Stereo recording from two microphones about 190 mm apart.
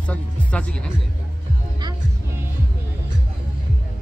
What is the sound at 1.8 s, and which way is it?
Music, 20° right (ahead or behind).